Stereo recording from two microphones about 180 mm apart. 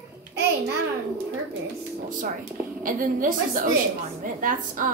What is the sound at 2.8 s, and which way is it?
A woman's voice, 50° right (ahead or behind).